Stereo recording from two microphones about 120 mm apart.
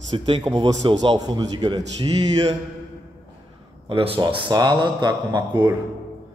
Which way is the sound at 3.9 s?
50° right (ahead or behind).